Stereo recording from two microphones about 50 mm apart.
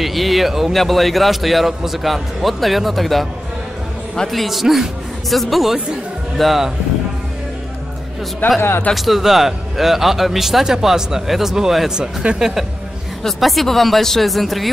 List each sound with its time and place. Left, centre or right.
0.0 s a man's voice: centre
4.3 s a man's voice: centre
8.5 s speech: left
8.9 s a man's voice: centre
11.9 s speech: centre
13.2 s a man's voice: centre